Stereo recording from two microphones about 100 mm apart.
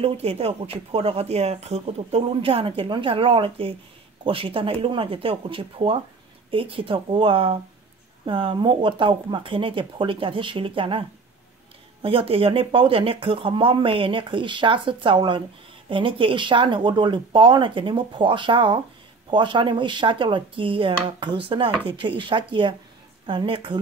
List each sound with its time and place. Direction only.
0.0 s speech: 85° right; by 23.8 s 55° right (ahead or behind)